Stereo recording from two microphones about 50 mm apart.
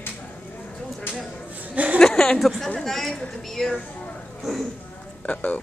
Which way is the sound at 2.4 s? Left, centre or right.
Centre.